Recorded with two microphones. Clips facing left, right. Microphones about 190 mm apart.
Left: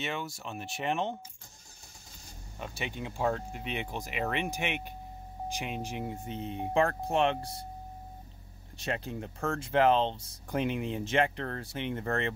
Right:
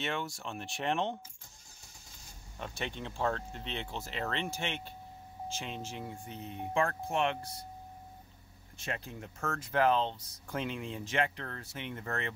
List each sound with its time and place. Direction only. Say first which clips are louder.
0.0 s speech: even; centre (ahead or behind)
2.6 s speech: left 2 dB; 5° left (ahead or behind); by 7.6 s 30° left (ahead or behind)
8.8 s speech: left 5 dB; 30° left (ahead or behind)